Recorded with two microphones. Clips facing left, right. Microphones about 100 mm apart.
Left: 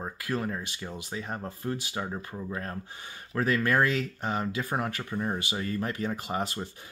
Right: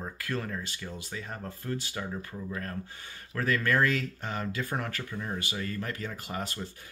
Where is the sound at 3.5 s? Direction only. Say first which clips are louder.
Left 1 dB; 15° left (ahead or behind).